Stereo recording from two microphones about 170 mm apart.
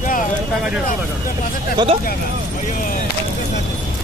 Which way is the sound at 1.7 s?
30° right (ahead or behind).